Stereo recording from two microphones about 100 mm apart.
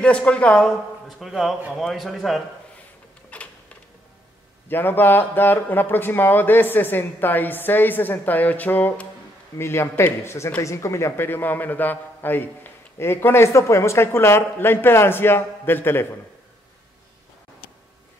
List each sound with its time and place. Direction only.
0.0 s speech: 10° left (ahead or behind)
1.0 s a man's voice: centre (ahead or behind)
3.3 s a sound: 15° left (ahead or behind)
4.6 s speech: 20° left (ahead or behind)